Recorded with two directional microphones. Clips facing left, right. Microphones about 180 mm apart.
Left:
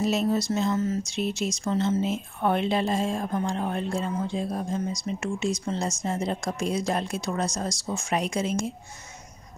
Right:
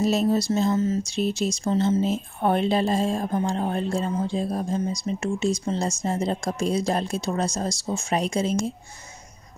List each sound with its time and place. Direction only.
0.0 s speech: 35° right (ahead or behind)